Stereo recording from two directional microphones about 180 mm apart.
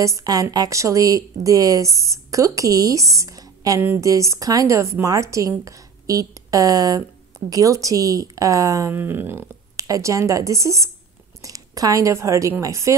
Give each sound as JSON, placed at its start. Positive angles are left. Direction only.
{"t": 0.0, "sound": "a woman's voice", "side_deg": -20}